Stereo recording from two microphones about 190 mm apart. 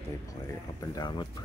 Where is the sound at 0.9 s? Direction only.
25° left (ahead or behind).